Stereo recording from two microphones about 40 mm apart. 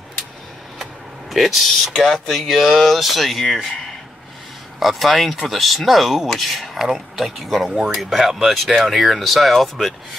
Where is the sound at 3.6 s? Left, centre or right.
Centre.